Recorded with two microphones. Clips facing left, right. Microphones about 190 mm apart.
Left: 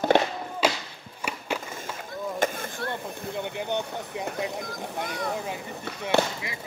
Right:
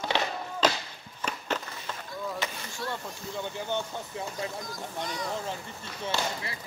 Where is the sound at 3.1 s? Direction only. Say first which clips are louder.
Left 5 dB; 55° left (ahead or behind).